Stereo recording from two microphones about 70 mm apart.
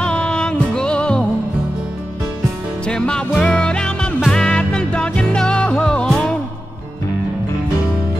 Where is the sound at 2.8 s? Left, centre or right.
Centre.